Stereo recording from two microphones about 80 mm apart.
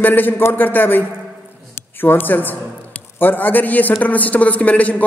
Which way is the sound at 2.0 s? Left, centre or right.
Left.